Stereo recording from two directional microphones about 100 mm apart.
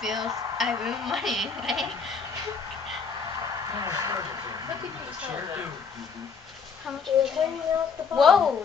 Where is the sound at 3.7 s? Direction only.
35° right (ahead or behind).